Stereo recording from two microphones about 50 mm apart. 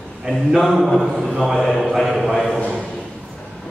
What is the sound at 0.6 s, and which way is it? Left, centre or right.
A man's voice, centre.